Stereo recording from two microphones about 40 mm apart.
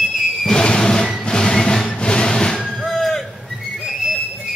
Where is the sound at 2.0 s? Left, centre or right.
Left.